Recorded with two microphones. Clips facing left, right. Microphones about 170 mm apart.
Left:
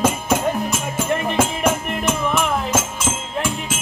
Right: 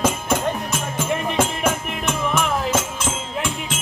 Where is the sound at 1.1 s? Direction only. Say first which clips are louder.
Left 2 dB; centre (ahead or behind).